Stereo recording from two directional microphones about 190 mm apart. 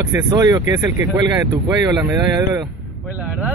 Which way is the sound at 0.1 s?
20° right (ahead or behind).